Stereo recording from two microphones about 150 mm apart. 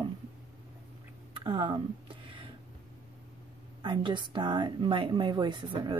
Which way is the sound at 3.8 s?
30° right (ahead or behind).